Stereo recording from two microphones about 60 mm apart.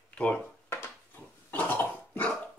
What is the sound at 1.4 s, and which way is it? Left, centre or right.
Cough, left.